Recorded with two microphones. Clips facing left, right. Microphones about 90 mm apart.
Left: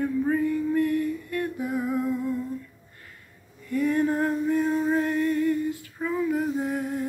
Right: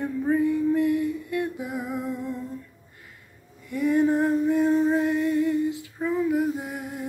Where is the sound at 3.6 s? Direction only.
15° right (ahead or behind).